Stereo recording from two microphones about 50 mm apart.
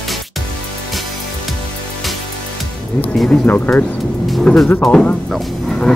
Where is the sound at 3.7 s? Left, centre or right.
Left.